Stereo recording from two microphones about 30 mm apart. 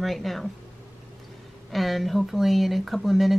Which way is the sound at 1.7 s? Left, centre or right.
Centre.